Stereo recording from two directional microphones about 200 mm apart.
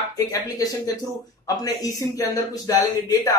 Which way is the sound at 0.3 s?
15° left (ahead or behind).